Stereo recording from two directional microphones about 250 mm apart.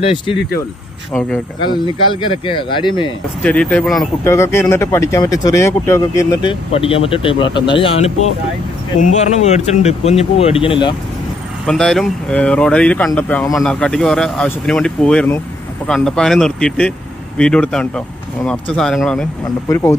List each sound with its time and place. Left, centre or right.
0.0 s speech: left
1.6 s speech: centre
3.4 s speech: centre
11.6 s speech: centre